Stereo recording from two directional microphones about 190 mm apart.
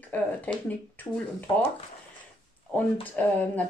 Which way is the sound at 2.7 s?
10° left (ahead or behind).